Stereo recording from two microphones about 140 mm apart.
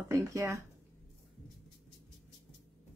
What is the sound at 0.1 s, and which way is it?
Speech, 20° right (ahead or behind).